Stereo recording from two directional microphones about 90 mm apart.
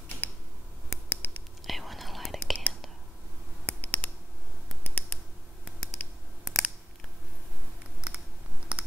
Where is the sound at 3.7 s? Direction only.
20° left (ahead or behind).